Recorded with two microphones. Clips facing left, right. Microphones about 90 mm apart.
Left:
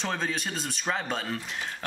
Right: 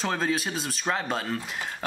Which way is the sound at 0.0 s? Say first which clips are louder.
Right 4 dB; 5° right (ahead or behind).